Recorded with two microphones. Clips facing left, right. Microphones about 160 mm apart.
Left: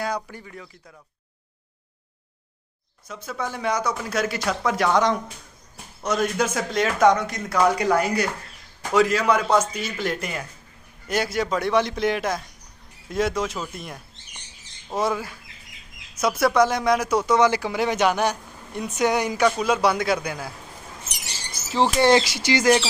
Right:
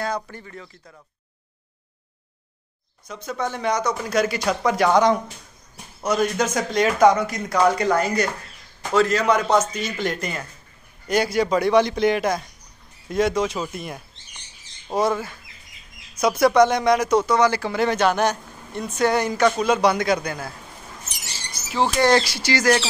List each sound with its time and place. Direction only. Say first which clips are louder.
0.0 s speech: right 1 dB; 10° left (ahead or behind)
3.1 s speech: right 3 dB; 5° left (ahead or behind)
17.3 s speech: even; 20° left (ahead or behind)
21.8 s speech: even; 20° left (ahead or behind)